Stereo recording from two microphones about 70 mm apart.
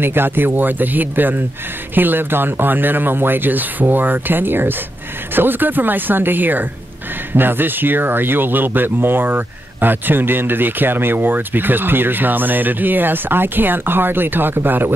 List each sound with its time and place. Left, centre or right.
0.0 s speech: right